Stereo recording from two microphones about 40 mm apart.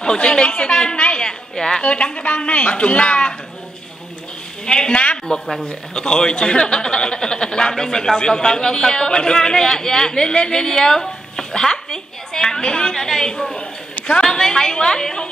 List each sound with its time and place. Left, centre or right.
0.0 s a sound: centre
1.5 s a woman's voice: centre
2.2 s a man's voice: left
4.6 s a woman's voice: left
5.2 s a man's voice: centre